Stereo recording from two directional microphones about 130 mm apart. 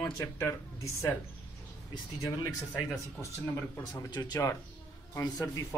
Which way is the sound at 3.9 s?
30° left (ahead or behind).